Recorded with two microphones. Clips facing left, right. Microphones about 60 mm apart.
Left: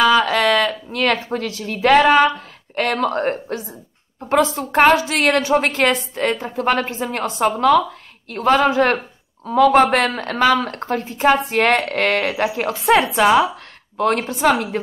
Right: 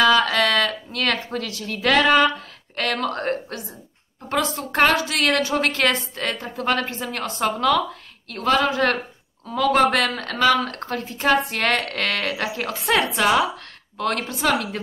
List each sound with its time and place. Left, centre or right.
0.0 s speech: centre